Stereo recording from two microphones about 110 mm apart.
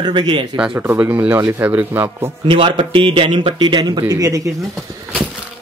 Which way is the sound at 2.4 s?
55° right (ahead or behind).